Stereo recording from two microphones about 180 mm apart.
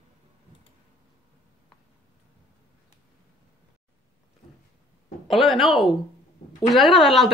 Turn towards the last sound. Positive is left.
turn(degrees=0)  # may be behind; listen again after turning